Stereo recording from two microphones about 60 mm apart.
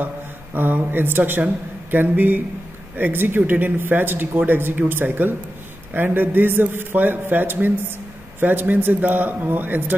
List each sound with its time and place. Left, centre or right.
0.6 s speech: right